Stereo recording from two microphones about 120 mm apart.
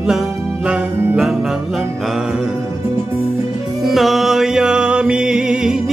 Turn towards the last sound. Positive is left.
turn(degrees=-5)  # may be behind; listen again after turning